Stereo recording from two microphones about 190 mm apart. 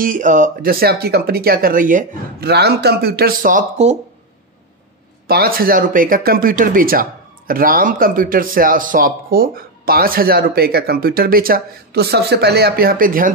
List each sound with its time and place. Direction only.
0.0 s speech: 45° right (ahead or behind)
5.3 s speech: 50° right (ahead or behind)